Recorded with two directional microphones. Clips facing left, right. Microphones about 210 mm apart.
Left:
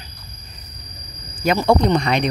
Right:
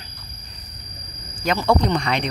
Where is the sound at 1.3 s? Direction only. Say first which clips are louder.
Left 3 dB; 10° left (ahead or behind).